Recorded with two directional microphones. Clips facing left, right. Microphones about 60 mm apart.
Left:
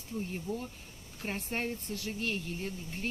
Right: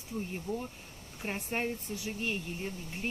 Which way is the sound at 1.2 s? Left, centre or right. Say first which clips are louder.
Right 1 dB; centre.